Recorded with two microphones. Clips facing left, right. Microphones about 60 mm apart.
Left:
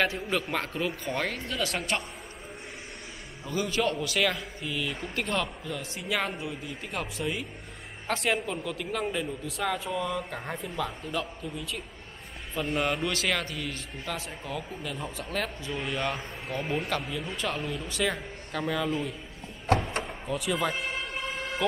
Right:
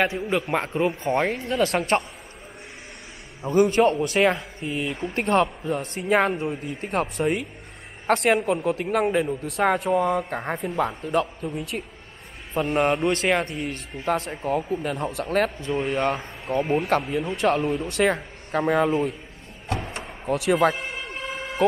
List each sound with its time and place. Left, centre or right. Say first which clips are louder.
0.0 s a man's voice: right 4 dB; centre
1.5 s a man's voice: right 9 dB; right
3.4 s a man's voice: right 10 dB; right
8.6 s a man's voice: right 9 dB; right
16.6 s a man's voice: right 7 dB; right
17.8 s a man's voice: right 8 dB; right
20.3 s speech: right 9 dB; right